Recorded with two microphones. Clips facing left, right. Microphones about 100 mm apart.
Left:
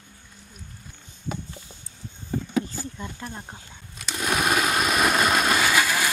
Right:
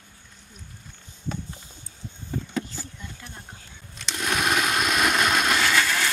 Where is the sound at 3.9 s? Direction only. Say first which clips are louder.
Left 1 dB; 5° left (ahead or behind).